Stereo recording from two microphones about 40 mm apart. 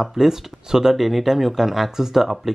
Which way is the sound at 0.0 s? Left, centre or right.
Centre.